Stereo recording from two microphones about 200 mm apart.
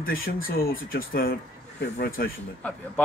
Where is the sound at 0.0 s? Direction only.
45° left (ahead or behind).